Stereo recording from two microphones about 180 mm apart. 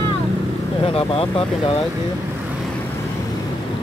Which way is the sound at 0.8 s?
30° left (ahead or behind).